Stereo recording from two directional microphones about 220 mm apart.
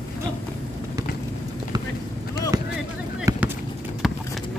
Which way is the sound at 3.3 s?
15° right (ahead or behind).